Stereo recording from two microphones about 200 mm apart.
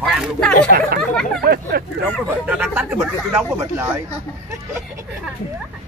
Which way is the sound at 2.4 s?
10° right (ahead or behind).